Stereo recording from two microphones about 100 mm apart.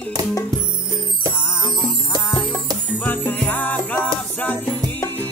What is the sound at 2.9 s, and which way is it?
Music, 20° left (ahead or behind).